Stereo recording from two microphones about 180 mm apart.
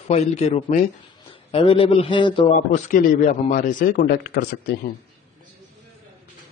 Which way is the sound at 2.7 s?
45° left (ahead or behind).